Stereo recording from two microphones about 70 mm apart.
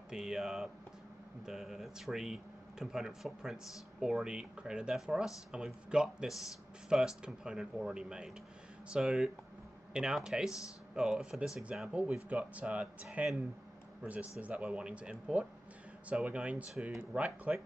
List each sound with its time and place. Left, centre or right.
0.1 s speech: centre